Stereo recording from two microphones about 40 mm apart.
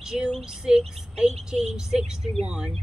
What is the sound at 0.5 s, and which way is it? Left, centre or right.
A woman's voice, centre.